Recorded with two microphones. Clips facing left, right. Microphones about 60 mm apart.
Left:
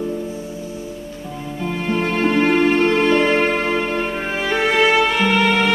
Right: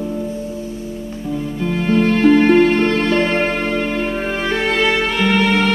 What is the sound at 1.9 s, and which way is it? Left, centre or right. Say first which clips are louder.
Music: right 6 dB; centre.